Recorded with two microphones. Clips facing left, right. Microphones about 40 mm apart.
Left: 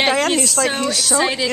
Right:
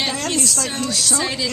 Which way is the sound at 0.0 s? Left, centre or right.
Left.